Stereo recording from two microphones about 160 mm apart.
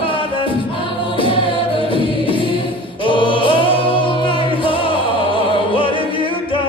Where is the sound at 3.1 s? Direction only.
30° left (ahead or behind).